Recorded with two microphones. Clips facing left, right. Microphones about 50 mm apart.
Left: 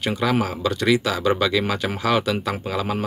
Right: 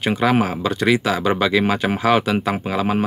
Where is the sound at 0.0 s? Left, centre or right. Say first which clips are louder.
Right 4 dB; right.